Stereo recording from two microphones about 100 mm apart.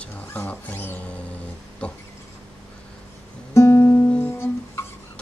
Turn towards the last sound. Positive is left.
turn(degrees=25)  # may be behind; listen again after turning